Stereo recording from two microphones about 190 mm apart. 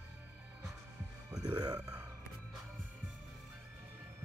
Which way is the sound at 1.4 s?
20° right (ahead or behind).